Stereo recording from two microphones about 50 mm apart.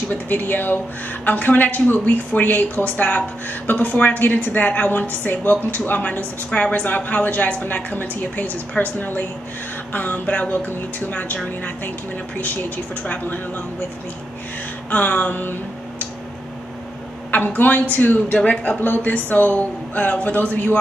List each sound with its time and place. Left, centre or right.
0.1 s a woman's voice: left
12.4 s a woman's voice: left
14.9 s a woman's voice: left
17.3 s a woman's voice: left